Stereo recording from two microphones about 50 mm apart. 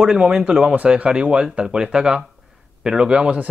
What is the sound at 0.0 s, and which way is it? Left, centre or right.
Speech, centre.